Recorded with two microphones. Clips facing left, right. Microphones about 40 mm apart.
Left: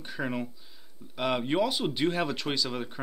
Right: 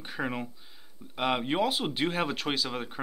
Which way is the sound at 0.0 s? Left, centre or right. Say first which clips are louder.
Left 1 dB; centre.